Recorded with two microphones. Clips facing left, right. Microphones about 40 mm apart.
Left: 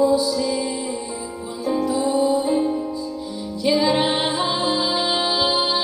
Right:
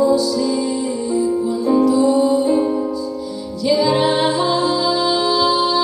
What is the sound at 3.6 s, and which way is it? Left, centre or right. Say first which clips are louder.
Music: right 3 dB; left.